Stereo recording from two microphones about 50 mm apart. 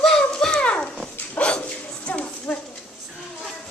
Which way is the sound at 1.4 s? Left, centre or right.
Left.